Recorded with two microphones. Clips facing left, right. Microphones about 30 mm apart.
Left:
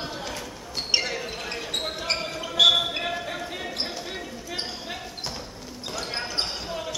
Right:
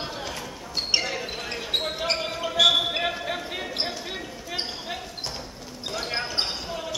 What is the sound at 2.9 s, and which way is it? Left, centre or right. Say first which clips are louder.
Basketball bounce: right 2 dB; centre.